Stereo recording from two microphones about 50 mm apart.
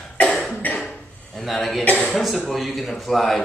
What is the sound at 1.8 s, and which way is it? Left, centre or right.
Speech, left.